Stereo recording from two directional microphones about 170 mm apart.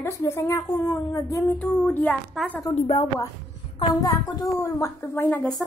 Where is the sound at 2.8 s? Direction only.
30° left (ahead or behind).